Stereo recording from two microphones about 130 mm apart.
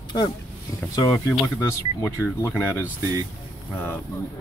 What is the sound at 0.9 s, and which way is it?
Speech, 25° left (ahead or behind).